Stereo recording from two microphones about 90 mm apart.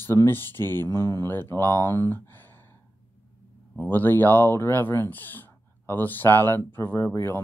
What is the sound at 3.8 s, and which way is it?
Speech, 25° left (ahead or behind).